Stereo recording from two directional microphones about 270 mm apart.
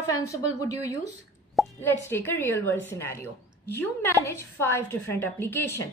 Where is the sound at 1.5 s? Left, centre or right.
Centre.